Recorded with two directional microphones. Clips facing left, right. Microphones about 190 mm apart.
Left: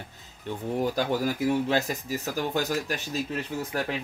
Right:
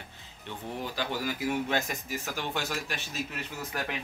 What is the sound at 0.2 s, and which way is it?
Speech, 45° left (ahead or behind).